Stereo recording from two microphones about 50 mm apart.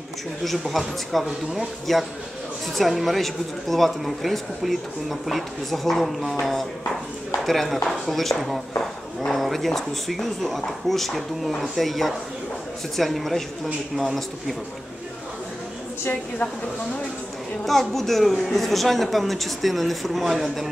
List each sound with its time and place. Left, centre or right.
0.4 s speech: centre
7.4 s speech: centre
17.6 s speech: centre